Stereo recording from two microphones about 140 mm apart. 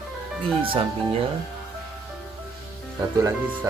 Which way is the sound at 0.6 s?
40° right (ahead or behind).